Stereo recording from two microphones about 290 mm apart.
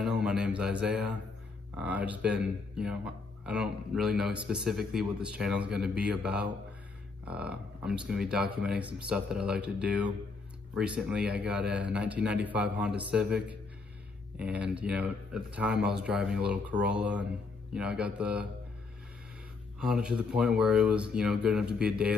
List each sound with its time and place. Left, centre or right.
0.0 s a sound: centre
1.8 s speech: centre
19.8 s speech: centre